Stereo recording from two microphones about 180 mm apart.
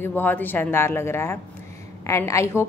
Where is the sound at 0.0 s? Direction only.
10° left (ahead or behind).